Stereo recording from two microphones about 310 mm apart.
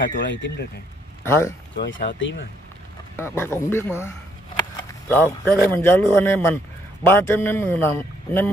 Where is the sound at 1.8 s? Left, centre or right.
Left.